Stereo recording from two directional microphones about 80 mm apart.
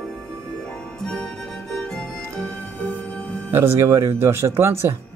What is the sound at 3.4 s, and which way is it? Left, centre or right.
Speech, right.